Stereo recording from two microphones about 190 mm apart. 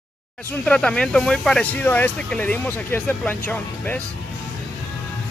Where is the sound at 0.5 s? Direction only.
5° left (ahead or behind).